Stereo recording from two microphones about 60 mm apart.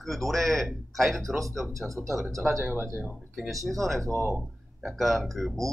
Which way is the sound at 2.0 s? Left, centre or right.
Centre.